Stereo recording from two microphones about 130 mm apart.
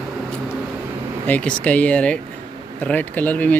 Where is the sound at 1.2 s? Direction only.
10° left (ahead or behind).